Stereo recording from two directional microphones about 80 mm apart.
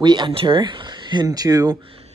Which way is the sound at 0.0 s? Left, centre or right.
Right.